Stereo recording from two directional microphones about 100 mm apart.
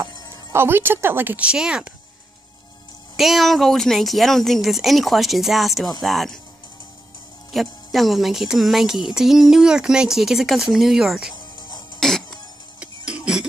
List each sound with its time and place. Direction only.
0.5 s speech: 25° right (ahead or behind); by 2.0 s 10° right (ahead or behind)
3.2 s speech: centre (ahead or behind)
7.5 s speech: centre (ahead or behind)
11.3 s music: 45° left (ahead or behind)
12.0 s music: 5° left (ahead or behind)
12.8 s cough: 10° right (ahead or behind)